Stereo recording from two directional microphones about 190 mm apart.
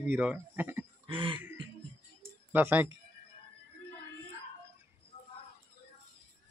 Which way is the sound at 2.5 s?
10° right (ahead or behind).